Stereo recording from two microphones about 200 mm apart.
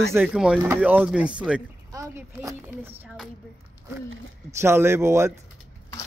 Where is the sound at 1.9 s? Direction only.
15° right (ahead or behind).